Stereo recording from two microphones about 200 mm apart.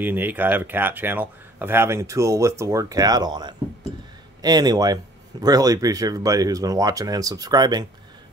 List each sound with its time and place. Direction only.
0.0 s speech: 10° right (ahead or behind)